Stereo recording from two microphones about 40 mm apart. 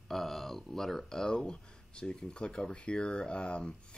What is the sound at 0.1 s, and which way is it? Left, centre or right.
Speech, centre.